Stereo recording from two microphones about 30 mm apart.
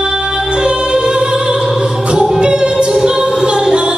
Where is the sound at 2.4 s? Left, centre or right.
Right.